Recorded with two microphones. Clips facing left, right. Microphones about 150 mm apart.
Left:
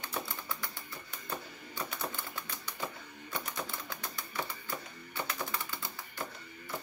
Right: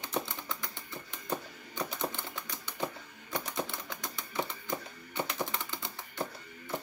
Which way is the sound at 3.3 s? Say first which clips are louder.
Right 4 dB; 20° right (ahead or behind).